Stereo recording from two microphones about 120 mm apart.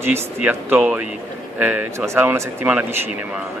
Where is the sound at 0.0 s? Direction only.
20° right (ahead or behind).